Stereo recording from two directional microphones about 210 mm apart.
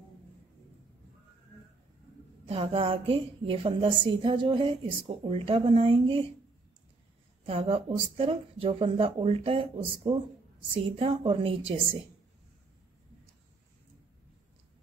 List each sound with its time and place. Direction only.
2.4 s a woman's voice: 25° right (ahead or behind)
7.4 s a woman's voice: 30° right (ahead or behind)